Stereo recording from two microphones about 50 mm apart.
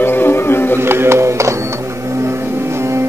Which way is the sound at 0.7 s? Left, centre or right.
Right.